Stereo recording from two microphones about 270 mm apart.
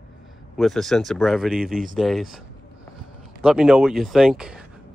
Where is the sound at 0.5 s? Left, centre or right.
Centre.